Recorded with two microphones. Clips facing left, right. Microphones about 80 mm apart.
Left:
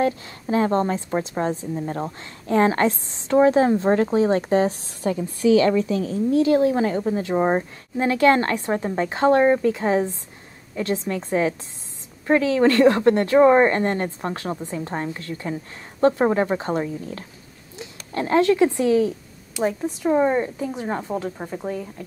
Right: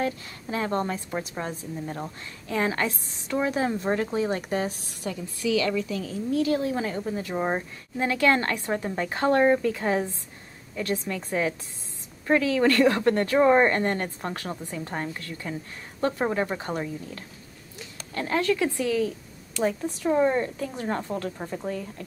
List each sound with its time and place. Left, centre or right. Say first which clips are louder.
0.0 s a woman's voice: left 6 dB; left; by 22.0 s centre